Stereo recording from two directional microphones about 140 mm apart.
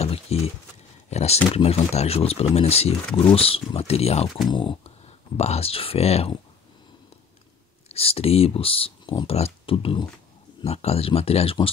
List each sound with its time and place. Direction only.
0.0 s a sound: 45° left (ahead or behind)
1.1 s speech: 50° left (ahead or behind)
4.5 s speech: 35° left (ahead or behind)
7.9 s speech: 45° left (ahead or behind)